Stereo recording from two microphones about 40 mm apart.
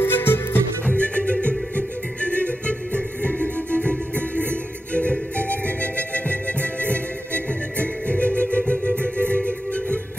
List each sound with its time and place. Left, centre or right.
0.0 s music: left
0.8 s music: left
6.1 s music: left
7.8 s music: left